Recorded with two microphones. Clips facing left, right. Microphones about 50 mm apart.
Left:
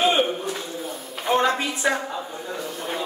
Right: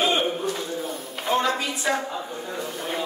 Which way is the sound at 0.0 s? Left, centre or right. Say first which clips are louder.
Left 2 dB; centre.